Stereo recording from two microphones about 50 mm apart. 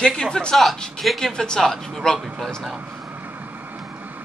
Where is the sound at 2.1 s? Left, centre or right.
Centre.